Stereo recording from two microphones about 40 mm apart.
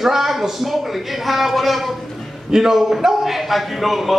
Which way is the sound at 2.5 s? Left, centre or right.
Centre.